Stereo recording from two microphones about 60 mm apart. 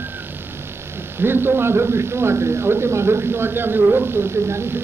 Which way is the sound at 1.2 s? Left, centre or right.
Right.